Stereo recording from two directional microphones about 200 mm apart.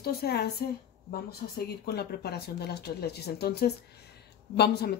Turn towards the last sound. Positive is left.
turn(degrees=55)  # may be behind; listen again after turning